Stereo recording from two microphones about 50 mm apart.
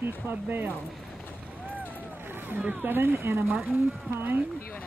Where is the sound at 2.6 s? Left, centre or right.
Right.